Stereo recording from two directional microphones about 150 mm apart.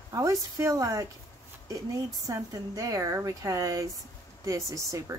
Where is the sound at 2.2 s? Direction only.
20° right (ahead or behind).